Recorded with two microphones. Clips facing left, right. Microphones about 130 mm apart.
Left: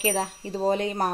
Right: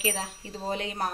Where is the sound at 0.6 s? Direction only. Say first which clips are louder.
Left 7 dB; 40° left (ahead or behind).